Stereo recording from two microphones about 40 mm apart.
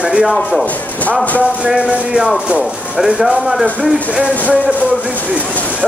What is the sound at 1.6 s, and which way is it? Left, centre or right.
Speech, right.